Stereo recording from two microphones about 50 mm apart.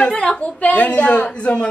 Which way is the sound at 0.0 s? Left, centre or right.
Left.